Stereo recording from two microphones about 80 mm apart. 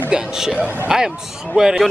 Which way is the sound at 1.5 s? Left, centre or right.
Centre.